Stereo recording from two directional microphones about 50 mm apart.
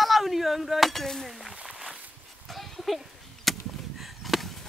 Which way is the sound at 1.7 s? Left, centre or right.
Centre.